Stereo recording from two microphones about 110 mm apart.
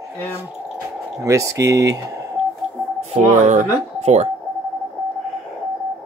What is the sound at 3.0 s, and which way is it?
Speech, 90° right.